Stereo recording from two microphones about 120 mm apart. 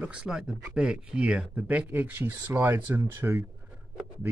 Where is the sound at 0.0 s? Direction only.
10° right (ahead or behind).